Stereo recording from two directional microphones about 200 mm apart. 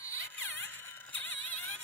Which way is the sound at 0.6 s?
10° left (ahead or behind).